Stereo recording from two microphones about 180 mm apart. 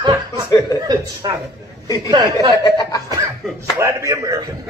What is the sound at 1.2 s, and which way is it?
Speech, 20° right (ahead or behind).